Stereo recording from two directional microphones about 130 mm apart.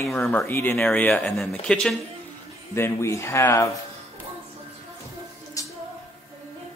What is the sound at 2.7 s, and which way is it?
Speech, 20° left (ahead or behind).